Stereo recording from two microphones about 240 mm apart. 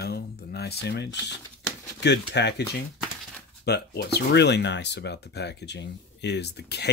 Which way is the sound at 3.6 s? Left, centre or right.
Left.